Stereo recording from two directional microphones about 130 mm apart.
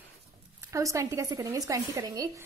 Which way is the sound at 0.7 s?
25° right (ahead or behind).